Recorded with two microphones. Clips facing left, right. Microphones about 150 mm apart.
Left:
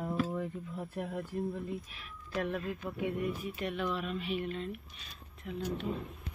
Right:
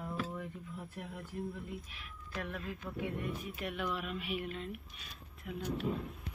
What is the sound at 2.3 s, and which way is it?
Speech, 25° left (ahead or behind).